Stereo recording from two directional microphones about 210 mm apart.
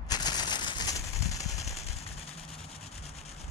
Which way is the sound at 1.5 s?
30° left (ahead or behind).